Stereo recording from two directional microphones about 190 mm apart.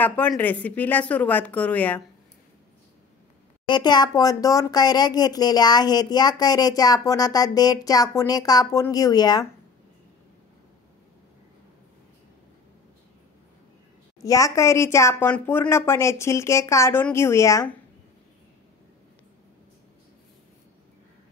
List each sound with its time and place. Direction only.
0.0 s a woman's voice: 5° left (ahead or behind)
3.6 s speech: 25° left (ahead or behind)
14.2 s a woman's voice: 15° left (ahead or behind)